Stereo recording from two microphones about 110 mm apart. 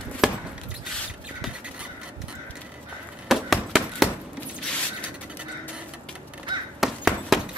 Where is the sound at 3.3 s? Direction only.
Centre (ahead or behind).